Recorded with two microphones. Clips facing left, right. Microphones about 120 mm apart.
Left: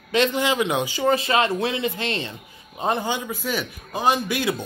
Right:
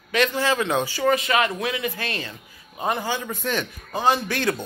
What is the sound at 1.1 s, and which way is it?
Speech, 30° left (ahead or behind).